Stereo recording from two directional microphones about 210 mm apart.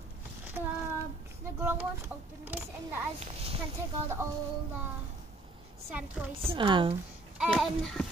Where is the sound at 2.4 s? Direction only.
10° right (ahead or behind).